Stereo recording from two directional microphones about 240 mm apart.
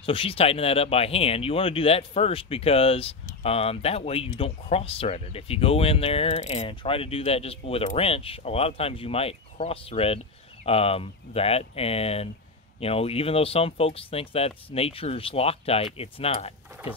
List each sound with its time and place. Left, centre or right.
0.0 s speech: left